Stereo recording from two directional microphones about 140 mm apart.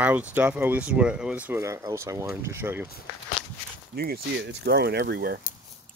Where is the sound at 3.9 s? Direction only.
90° right.